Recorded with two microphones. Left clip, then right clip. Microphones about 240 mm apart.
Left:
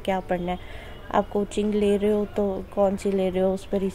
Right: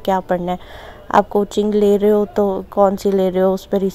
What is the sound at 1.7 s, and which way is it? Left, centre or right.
Speech, centre.